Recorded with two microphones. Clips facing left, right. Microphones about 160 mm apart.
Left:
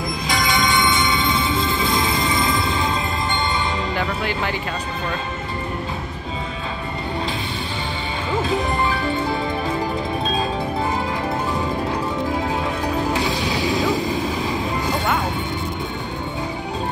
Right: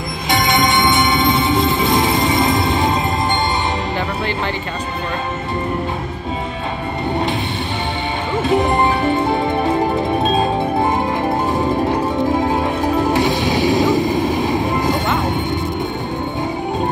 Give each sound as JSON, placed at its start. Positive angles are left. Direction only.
{"t": 0.3, "sound": "music", "side_deg": -25}
{"t": 8.5, "sound": "music", "side_deg": -25}
{"t": 10.2, "sound": "music", "side_deg": -45}
{"t": 13.2, "sound": "vehicle", "side_deg": -20}